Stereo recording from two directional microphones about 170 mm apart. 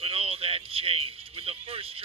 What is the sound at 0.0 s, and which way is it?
Speech, 35° right (ahead or behind).